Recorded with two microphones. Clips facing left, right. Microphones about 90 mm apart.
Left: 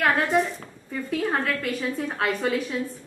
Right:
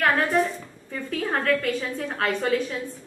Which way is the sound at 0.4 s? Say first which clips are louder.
Right 1 dB; 5° left (ahead or behind).